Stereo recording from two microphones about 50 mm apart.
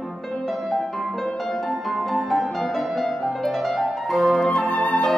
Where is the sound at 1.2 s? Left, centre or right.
Centre.